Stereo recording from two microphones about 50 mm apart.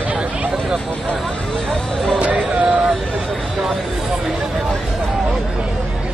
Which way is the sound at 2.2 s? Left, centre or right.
Right.